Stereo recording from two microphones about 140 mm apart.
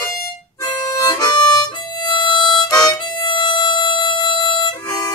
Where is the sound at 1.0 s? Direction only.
30° left (ahead or behind).